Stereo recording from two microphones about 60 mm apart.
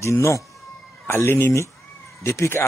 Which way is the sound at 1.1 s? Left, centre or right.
Left.